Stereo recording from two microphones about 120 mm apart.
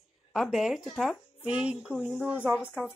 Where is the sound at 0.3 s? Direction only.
Centre (ahead or behind).